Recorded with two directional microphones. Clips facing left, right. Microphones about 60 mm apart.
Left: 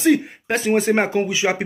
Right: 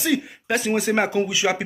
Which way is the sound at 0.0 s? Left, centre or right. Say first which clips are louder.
Left 6 dB; left.